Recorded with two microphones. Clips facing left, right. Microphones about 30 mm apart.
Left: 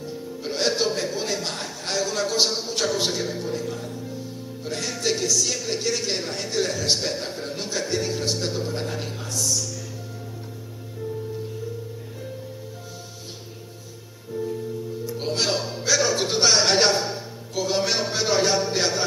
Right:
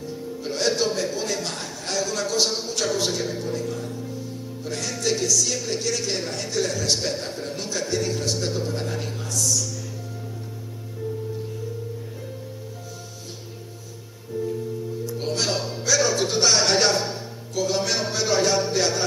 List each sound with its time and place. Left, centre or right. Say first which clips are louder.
0.0 s a man's voice: right 1 dB; centre
4.6 s music: left 1 dB; centre
4.9 s speech: right 1 dB; centre
14.3 s music: right 1 dB; centre
16.3 s a sound: even; centre
16.5 s music: left 2 dB; centre
16.9 s a sound: even; centre
17.6 s music: left 1 dB; centre